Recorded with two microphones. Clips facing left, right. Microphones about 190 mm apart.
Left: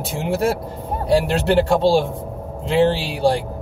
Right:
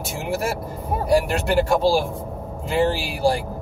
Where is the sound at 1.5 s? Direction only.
25° left (ahead or behind).